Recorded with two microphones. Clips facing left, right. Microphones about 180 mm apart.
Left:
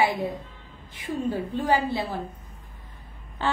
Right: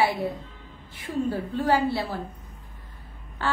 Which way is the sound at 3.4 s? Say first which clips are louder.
Left 1 dB; 20° left (ahead or behind).